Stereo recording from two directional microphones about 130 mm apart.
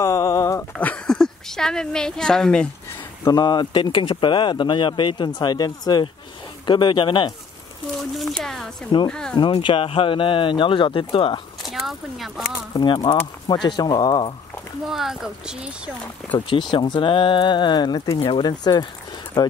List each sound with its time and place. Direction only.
0.0 s a sound: 25° left (ahead or behind)
0.7 s a woman's voice: 10° left (ahead or behind)
3.3 s speech: 35° left (ahead or behind)
8.0 s speech: centre (ahead or behind)
9.4 s speech: 40° left (ahead or behind)
11.6 s speech: centre (ahead or behind)
12.7 s speech: 35° left (ahead or behind)
14.9 s speech: 5° right (ahead or behind)
16.3 s speech: 40° left (ahead or behind)